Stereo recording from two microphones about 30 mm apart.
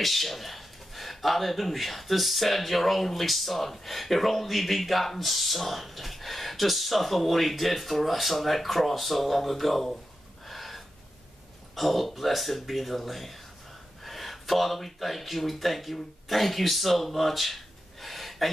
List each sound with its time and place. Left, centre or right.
0.0 s speech: centre
10.5 s gasp: centre
11.7 s speech: centre
18.0 s a sound: centre